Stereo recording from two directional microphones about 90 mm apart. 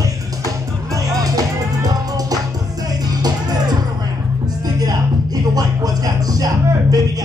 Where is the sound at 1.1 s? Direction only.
45° right (ahead or behind).